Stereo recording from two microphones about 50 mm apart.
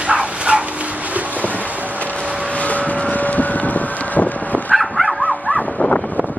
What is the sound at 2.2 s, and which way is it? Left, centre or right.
Vehicle, right.